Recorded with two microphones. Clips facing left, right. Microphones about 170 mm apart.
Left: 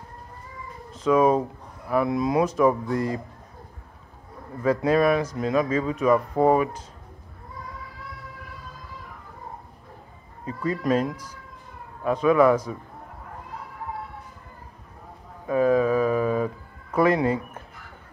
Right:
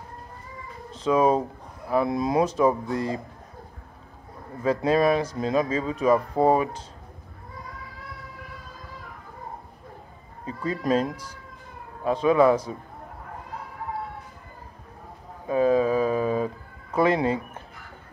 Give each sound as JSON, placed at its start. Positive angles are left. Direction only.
{"t": 0.9, "sound": "speech", "side_deg": -30}
{"t": 4.6, "sound": "speech", "side_deg": -30}
{"t": 10.4, "sound": "speech", "side_deg": -25}
{"t": 15.4, "sound": "a sound", "side_deg": -25}